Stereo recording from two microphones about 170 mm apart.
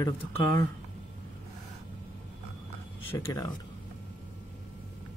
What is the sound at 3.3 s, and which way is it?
Speech, 25° left (ahead or behind).